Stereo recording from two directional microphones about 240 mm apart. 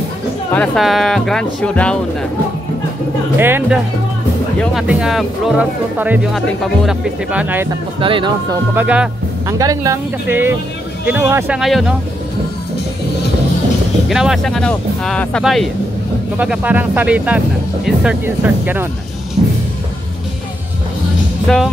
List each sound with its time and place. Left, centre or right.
0.5 s speech: centre
3.3 s speech: centre
8.0 s speech: right
8.7 s speech: centre
14.0 s speech: centre
21.5 s speech: centre